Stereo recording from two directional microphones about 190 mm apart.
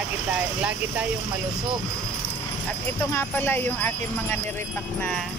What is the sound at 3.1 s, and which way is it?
Speech, 10° left (ahead or behind).